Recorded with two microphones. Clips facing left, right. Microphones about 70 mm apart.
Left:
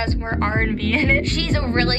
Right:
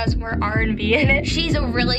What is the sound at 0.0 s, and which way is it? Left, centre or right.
Speech, left.